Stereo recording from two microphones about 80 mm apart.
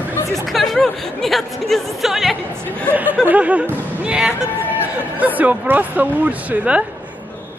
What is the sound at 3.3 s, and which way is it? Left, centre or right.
A woman's voice, centre.